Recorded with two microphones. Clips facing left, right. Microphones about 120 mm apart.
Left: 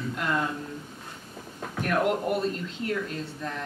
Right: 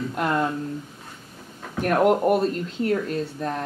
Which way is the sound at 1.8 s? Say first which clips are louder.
Right 7 dB; 50° right (ahead or behind).